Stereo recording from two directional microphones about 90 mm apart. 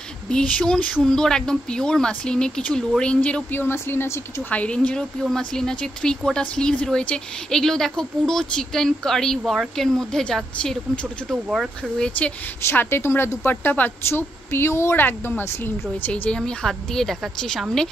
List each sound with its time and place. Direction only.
0.3 s speech: 10° left (ahead or behind)
3.6 s a woman's voice: 25° left (ahead or behind); by 10.8 s 10° left (ahead or behind)
11.3 s speech: 10° right (ahead or behind)
12.6 s a woman's voice: 25° left (ahead or behind)
16.3 s a woman's voice: 10° left (ahead or behind)